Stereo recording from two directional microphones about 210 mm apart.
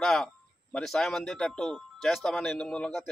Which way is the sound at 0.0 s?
Centre (ahead or behind).